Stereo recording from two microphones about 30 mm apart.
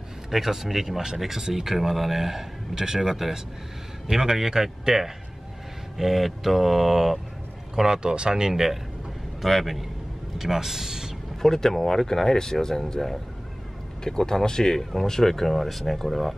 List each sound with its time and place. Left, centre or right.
0.3 s speech: centre
7.7 s speech: centre
8.0 s speech: right
9.4 s a man's voice: centre
11.4 s speech: centre